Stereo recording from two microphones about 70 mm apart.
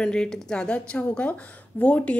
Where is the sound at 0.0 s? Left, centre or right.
Centre.